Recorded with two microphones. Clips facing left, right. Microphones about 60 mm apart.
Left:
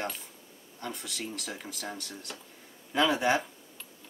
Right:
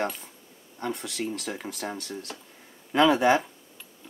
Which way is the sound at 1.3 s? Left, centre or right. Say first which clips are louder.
Right 6 dB; right.